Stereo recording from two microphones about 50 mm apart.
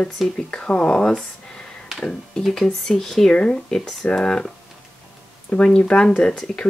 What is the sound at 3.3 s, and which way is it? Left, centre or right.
Speech, centre.